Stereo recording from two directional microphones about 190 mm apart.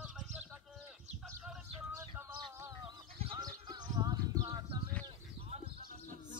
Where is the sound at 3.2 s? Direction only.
25° right (ahead or behind).